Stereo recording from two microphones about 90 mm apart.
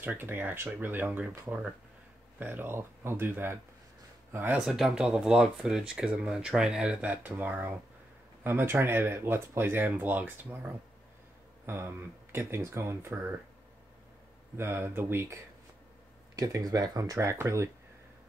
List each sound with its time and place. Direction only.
0.0 s speech: 20° right (ahead or behind)
4.6 s speech: 5° right (ahead or behind); by 13.3 s 30° right (ahead or behind)
14.6 s speech: 25° right (ahead or behind)
16.3 s speech: 40° right (ahead or behind)